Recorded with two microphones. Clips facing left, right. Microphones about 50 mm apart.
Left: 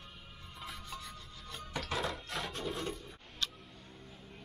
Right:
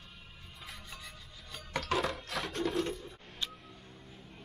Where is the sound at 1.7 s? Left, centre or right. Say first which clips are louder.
Right 4 dB; right.